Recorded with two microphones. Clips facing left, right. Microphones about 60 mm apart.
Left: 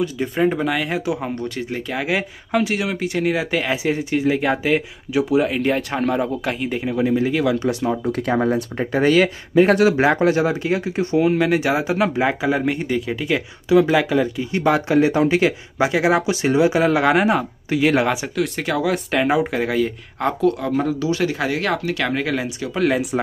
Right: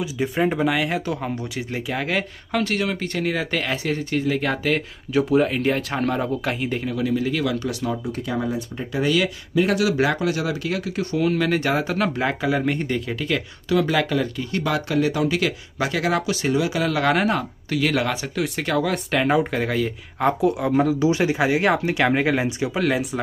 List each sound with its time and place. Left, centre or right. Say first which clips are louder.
0.0 s speech: left 3 dB; centre
1.3 s speech: left 3 dB; centre
6.8 s speech: left 4 dB; left
8.0 s speech: left 6 dB; left
8.9 s speech: left 5 dB; left
17.0 s speech: left 3 dB; centre
18.3 s speech: left 1 dB; centre; by 22.7 s right
22.8 s speech: left 4 dB; centre